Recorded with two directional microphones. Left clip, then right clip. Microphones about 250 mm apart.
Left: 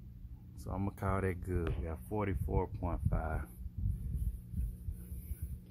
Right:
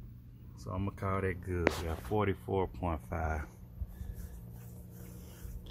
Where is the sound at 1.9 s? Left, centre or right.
Centre.